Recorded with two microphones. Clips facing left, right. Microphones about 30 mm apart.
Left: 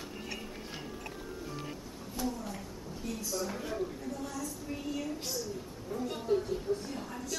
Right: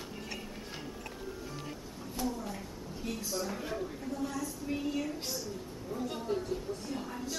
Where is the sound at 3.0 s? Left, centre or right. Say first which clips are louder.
Even; centre.